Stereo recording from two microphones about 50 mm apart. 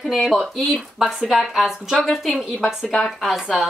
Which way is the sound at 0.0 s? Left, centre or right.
Centre.